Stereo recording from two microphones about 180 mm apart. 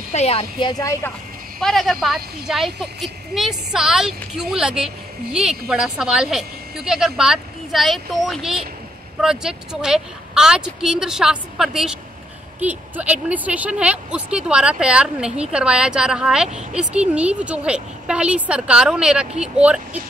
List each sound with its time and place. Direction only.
0.1 s a woman's voice: 35° left (ahead or behind); by 1.1 s 20° left (ahead or behind)
1.6 s speech: centre (ahead or behind)